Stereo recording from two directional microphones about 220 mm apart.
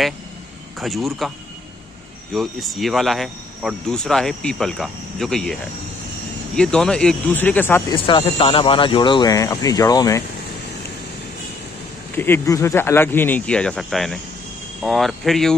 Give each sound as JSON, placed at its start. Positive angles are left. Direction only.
{"t": 0.7, "sound": "speech", "side_deg": 0}
{"t": 2.3, "sound": "speech", "side_deg": 0}
{"t": 7.9, "sound": "speech", "side_deg": 25}
{"t": 12.2, "sound": "speech", "side_deg": 10}